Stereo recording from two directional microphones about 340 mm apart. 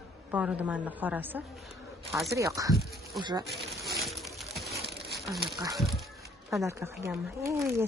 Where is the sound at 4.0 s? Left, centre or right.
Centre.